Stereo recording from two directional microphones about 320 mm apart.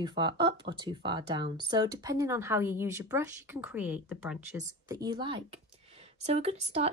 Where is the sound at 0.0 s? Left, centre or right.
Centre.